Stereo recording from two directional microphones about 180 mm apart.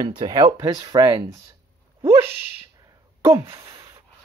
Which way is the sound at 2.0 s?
15° right (ahead or behind).